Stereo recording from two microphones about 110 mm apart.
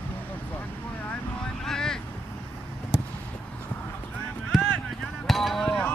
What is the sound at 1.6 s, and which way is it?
Boat, 5° left (ahead or behind).